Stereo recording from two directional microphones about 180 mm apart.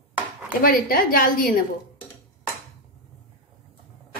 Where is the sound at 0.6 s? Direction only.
50° left (ahead or behind).